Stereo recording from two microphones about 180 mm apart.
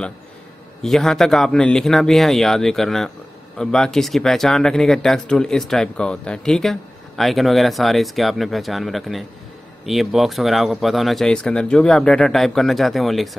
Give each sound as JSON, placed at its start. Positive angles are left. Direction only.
{"t": 0.8, "sound": "speech", "side_deg": 0}